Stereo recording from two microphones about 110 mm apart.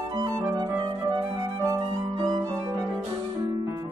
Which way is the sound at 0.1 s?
30° right (ahead or behind).